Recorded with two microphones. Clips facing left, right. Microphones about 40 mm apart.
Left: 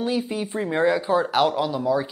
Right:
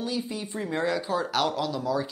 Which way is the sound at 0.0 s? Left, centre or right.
Left.